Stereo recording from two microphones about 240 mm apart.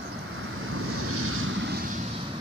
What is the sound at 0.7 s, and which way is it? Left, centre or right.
Vehicle, right.